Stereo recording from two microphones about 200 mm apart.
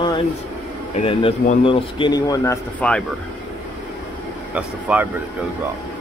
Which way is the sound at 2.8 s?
5° left (ahead or behind).